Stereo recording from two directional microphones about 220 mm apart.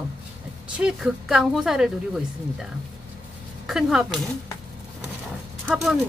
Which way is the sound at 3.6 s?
Centre (ahead or behind).